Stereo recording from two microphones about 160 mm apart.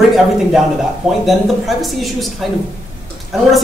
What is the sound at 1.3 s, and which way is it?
Speech, centre (ahead or behind).